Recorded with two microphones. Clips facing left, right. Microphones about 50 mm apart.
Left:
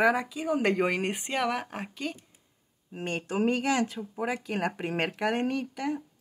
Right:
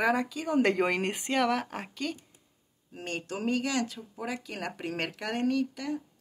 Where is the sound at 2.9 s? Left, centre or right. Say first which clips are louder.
Left 4 dB; left.